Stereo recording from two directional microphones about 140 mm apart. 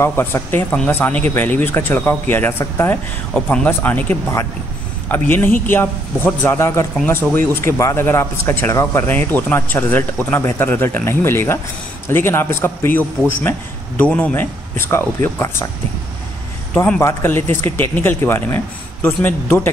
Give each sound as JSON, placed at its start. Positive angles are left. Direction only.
{"t": 0.0, "sound": "speech", "side_deg": 15}
{"t": 16.7, "sound": "speech", "side_deg": 10}